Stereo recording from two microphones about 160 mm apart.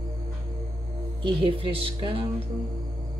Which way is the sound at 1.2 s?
30° right (ahead or behind).